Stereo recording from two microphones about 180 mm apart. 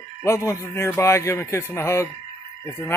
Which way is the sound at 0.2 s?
15° left (ahead or behind).